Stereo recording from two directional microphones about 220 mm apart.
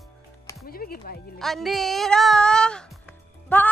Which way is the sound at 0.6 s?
40° left (ahead or behind).